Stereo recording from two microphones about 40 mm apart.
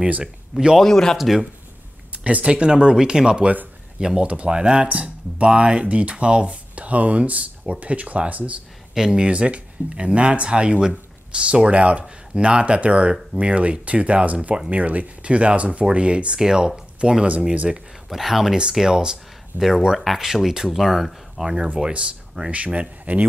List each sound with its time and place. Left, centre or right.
0.2 s speech: centre
0.8 s speech: centre
1.1 s speech: centre
2.2 s speech: right
8.9 s speech: centre
16.3 s speech: centre
18.1 s speech: centre
18.6 s speech: centre
19.5 s speech: right
20.2 s speech: centre
21.7 s speech: right
22.5 s speech: right